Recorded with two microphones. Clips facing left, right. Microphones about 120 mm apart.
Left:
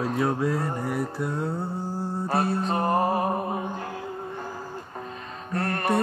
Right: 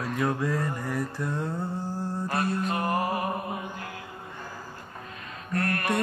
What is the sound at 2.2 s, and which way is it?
Music, 30° left (ahead or behind).